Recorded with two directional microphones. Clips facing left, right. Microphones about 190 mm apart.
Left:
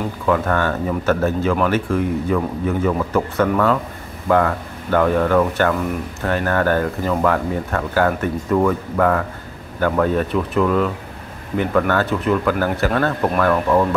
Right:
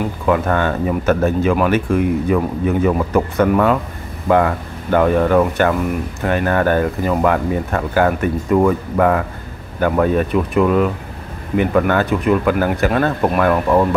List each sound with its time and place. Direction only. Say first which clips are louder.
0.3 s speech: right 2 dB; 20° right (ahead or behind)